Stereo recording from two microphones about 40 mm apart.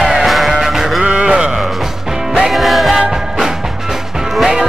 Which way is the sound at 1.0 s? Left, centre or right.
Right.